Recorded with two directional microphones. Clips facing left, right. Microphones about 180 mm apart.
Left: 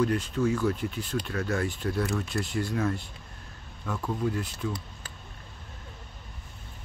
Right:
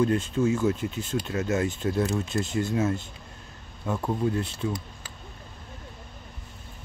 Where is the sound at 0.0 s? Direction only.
25° right (ahead or behind).